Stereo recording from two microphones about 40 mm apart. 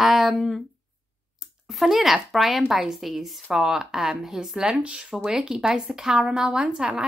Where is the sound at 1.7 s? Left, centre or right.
Centre; by 5.3 s right.